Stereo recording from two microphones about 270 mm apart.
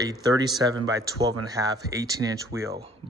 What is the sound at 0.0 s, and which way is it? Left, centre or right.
Speech, centre.